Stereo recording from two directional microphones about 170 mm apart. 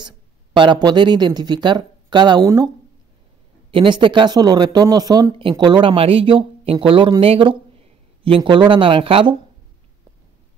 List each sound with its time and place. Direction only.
0.0 s speech: 25° right (ahead or behind)
3.7 s speech: 30° right (ahead or behind)